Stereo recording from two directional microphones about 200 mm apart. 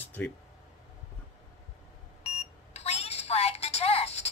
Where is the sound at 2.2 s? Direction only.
30° left (ahead or behind).